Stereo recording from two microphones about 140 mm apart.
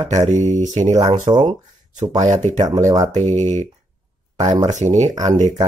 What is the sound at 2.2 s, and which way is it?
Speech, 55° right (ahead or behind).